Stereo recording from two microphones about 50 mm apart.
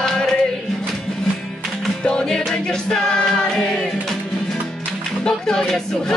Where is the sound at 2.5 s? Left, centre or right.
Centre.